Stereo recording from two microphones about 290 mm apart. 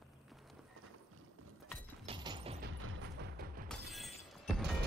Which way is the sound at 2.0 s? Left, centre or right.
Centre.